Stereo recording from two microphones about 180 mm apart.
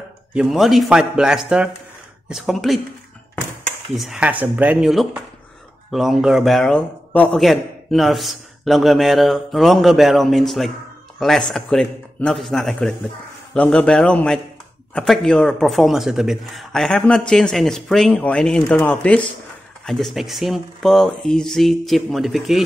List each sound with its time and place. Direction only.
0.3 s a man's voice: 5° right (ahead or behind)
3.9 s a man's voice: centre (ahead or behind)